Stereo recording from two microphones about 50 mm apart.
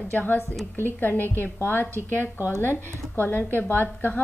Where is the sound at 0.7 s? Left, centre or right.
Left.